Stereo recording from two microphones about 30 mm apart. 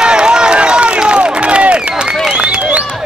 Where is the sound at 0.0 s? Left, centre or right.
Right.